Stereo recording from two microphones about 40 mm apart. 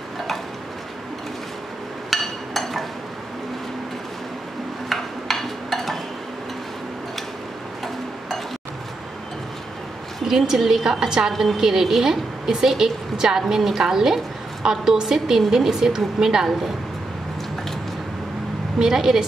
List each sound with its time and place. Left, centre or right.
2.0 s hammer: centre
4.8 s a sound: centre
10.2 s a woman's voice: centre
18.8 s a woman's voice: centre